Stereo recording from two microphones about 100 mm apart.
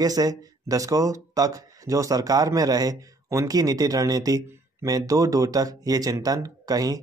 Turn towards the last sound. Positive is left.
turn(degrees=-40)  # may be behind; listen again after turning